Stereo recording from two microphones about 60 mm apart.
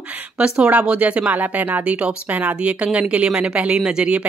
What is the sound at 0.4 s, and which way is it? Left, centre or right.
Speech, right.